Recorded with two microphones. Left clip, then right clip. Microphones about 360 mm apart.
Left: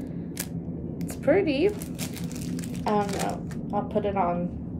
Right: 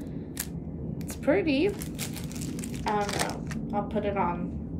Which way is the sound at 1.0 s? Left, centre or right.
Centre.